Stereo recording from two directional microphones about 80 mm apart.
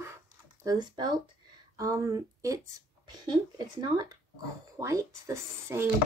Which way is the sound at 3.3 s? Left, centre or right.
Right.